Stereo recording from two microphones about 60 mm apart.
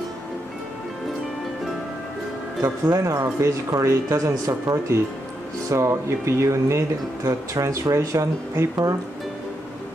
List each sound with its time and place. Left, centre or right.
2.6 s speech: right
4.5 s speech: right
5.7 s speech: right